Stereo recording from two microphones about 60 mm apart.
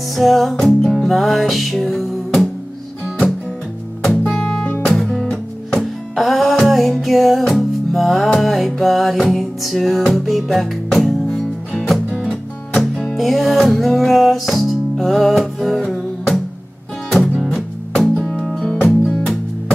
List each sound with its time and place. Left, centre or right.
0.1 s music: centre
4.3 s music: centre
12.3 s music: centre